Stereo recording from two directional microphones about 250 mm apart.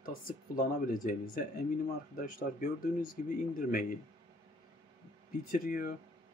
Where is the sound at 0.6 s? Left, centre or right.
Left.